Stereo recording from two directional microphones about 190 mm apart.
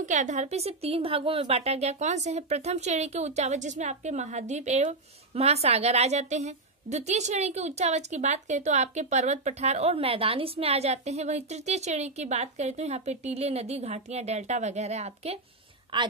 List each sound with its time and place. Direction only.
0.0 s a woman's voice: 40° right (ahead or behind)
15.9 s a woman's voice: 25° right (ahead or behind)